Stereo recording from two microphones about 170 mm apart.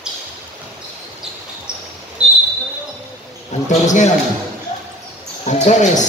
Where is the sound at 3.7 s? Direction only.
45° left (ahead or behind).